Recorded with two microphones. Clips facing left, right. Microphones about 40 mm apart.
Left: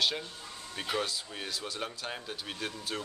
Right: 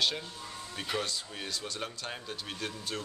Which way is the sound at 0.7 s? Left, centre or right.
Centre.